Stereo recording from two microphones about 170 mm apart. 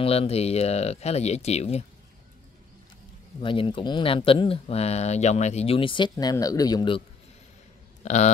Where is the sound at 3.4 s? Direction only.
30° left (ahead or behind).